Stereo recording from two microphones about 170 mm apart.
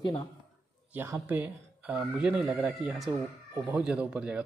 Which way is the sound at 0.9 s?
10° right (ahead or behind).